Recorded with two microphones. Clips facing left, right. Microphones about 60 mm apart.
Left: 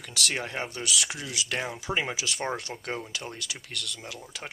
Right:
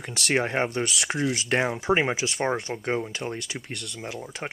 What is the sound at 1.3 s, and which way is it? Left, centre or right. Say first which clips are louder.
Speech: right 7 dB; right.